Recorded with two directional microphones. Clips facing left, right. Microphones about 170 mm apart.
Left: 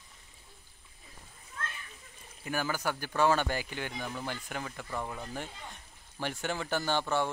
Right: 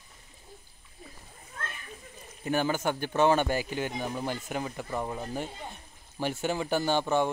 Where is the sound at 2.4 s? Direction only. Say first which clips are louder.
Right 5 dB; 25° right (ahead or behind).